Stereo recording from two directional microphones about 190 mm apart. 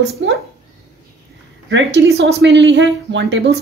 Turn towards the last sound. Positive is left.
turn(degrees=-65)  # may be behind; listen again after turning